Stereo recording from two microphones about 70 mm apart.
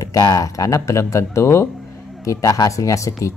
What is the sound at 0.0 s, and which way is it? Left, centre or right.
Speech, left.